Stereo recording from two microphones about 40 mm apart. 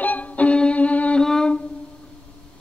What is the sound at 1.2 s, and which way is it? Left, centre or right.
Music, centre.